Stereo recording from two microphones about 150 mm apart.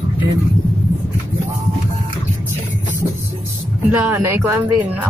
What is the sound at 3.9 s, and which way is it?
Speech, 15° right (ahead or behind).